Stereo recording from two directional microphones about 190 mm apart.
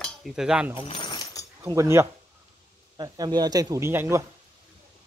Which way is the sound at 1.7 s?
15° right (ahead or behind).